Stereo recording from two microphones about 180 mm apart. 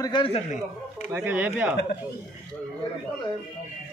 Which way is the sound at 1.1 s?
10° right (ahead or behind).